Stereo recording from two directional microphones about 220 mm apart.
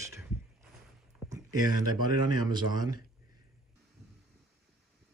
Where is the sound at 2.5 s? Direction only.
20° right (ahead or behind).